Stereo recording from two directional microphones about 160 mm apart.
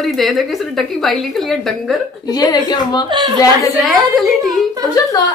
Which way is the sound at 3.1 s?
25° right (ahead or behind).